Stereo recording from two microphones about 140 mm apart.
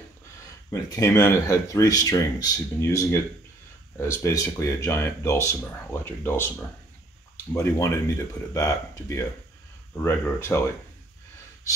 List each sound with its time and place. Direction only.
0.7 s speech: 25° left (ahead or behind)
7.5 s speech: 20° left (ahead or behind)